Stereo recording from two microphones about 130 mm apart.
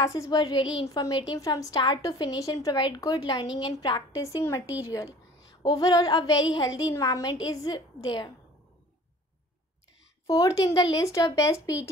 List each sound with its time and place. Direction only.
0.0 s a woman's voice: 25° left (ahead or behind)
10.2 s a woman's voice: 30° left (ahead or behind)